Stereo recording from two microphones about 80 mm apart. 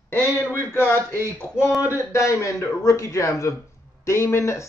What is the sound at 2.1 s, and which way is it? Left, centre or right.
Speech, left.